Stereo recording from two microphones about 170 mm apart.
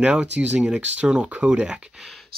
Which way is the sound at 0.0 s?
5° right (ahead or behind).